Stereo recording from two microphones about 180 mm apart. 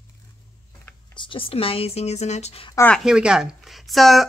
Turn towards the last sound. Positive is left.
turn(degrees=0)  # may be behind; listen again after turning